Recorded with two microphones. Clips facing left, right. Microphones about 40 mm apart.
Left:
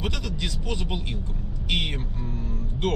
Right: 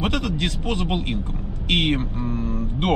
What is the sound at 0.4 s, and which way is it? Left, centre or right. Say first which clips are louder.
Speech: right 6 dB; right.